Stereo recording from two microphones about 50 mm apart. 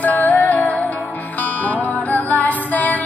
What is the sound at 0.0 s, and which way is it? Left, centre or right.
Music, left.